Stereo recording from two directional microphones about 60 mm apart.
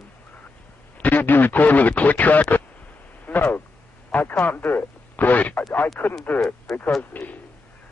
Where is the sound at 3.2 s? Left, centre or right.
Left.